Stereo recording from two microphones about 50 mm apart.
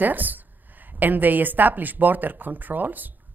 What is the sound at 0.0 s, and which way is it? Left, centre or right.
A woman's voice, right.